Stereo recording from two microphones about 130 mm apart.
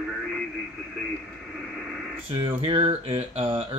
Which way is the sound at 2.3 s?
50° right (ahead or behind).